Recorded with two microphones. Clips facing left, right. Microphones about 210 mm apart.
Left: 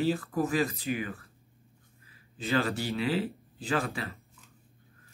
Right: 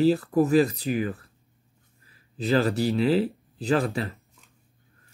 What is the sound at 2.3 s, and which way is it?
Speech, 35° right (ahead or behind).